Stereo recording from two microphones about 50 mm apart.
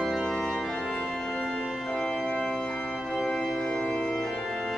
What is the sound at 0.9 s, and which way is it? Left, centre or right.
Organ, centre.